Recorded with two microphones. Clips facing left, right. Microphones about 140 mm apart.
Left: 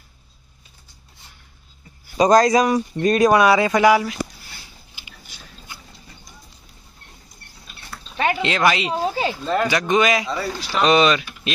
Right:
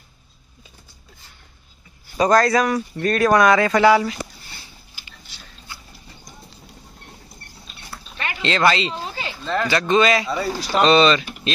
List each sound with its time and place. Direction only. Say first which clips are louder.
2.1 s speech: left 2 dB; 20° left (ahead or behind)
8.4 s speech: right 4 dB; 10° left (ahead or behind)
10.5 s speech: right 4 dB; 10° right (ahead or behind)
10.8 s speech: right 1 dB; 10° left (ahead or behind)